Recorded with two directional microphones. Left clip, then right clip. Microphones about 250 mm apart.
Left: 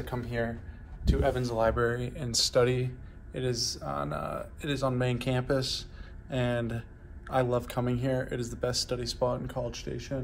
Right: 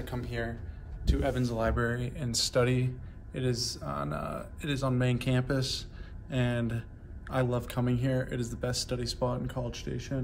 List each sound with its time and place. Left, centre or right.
0.0 s speech: left
1.2 s speech: centre